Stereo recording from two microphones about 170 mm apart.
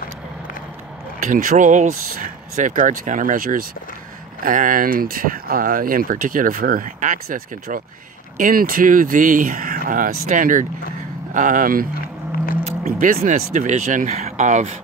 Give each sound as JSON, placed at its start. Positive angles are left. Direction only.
{"t": 1.2, "sound": "speech", "side_deg": -50}